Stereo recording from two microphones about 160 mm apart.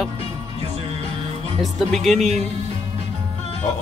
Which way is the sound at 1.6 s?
Centre (ahead or behind).